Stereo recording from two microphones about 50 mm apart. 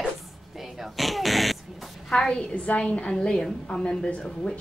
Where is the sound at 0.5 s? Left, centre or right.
Centre.